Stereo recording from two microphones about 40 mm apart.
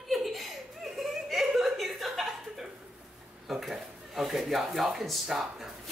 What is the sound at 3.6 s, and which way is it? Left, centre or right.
Speech, centre.